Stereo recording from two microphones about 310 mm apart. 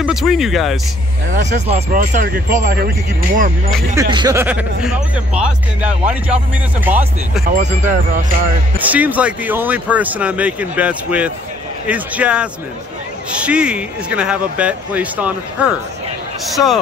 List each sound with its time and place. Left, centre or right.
0.0 s speech: centre
1.3 s speech: right
3.9 s speech: centre
7.4 s speech: right
8.7 s speech: centre